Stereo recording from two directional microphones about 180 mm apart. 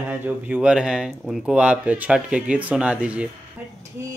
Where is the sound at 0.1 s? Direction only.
10° right (ahead or behind).